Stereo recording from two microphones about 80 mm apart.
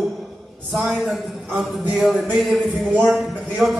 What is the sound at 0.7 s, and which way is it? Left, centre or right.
A man's voice, centre.